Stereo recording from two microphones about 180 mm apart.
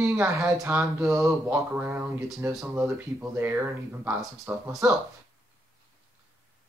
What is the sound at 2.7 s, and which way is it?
Speech, 15° right (ahead or behind).